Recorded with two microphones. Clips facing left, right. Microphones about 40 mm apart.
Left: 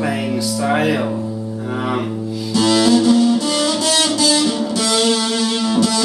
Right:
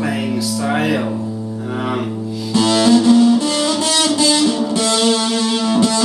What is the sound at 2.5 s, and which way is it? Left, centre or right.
Music, centre.